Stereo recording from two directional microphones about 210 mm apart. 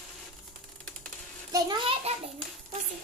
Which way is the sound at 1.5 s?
20° right (ahead or behind).